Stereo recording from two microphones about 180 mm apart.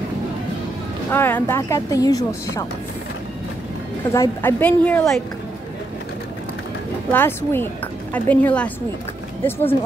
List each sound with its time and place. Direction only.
1.1 s a woman's voice: 10° left (ahead or behind)
4.1 s a woman's voice: 15° left (ahead or behind)
7.1 s a woman's voice: 10° left (ahead or behind)